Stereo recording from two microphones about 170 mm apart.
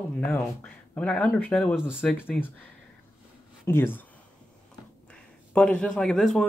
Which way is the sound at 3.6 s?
15° left (ahead or behind).